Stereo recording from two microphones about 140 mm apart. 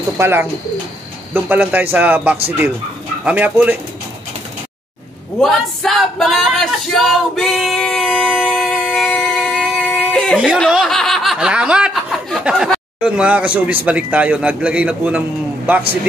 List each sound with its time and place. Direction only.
0.2 s a man's voice: 15° right (ahead or behind)
5.4 s a sound: 5° left (ahead or behind)
10.4 s snicker: centre (ahead or behind)